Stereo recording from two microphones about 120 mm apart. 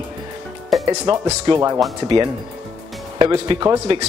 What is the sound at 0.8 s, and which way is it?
Speech, 35° right (ahead or behind).